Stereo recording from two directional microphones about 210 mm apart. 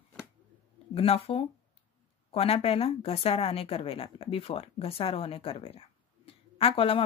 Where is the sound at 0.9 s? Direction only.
25° left (ahead or behind).